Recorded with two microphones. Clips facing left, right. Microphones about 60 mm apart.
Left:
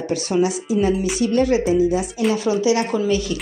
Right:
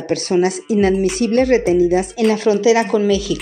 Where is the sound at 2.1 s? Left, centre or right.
Right.